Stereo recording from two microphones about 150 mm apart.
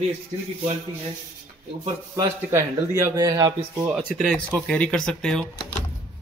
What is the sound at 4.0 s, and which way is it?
Speech, centre (ahead or behind).